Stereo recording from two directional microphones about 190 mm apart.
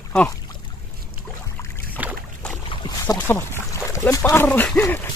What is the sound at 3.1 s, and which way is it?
Speech, 10° left (ahead or behind).